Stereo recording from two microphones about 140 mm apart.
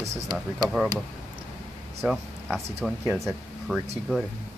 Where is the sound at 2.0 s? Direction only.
Centre (ahead or behind).